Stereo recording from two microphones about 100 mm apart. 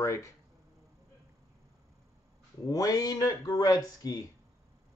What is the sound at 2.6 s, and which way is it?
A man's voice, 40° left (ahead or behind).